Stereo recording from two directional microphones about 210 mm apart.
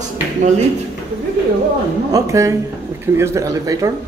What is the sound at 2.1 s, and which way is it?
Speech, 15° right (ahead or behind).